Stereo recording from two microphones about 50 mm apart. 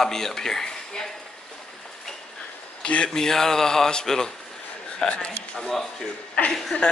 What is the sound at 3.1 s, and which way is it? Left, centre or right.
A man's voice, centre.